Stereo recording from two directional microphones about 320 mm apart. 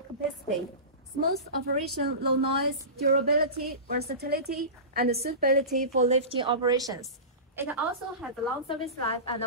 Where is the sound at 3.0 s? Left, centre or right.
Right; by 8.3 s centre.